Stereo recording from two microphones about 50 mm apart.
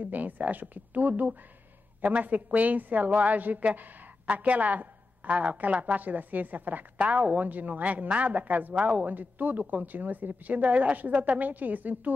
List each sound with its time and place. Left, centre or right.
0.0 s a woman's voice: right